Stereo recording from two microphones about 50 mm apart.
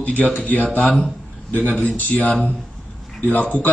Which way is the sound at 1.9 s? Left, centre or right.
Left.